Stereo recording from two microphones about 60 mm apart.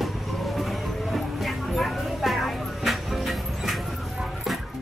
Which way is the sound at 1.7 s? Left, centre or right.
Centre.